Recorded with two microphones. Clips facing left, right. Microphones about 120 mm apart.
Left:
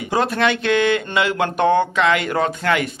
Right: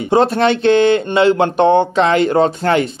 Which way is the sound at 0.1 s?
30° right (ahead or behind).